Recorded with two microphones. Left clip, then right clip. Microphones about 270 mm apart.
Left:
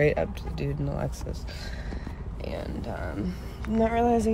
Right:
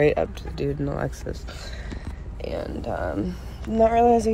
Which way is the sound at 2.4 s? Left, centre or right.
Centre.